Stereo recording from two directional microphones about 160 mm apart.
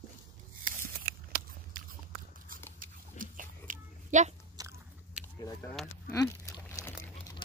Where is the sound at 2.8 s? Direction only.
55° right (ahead or behind).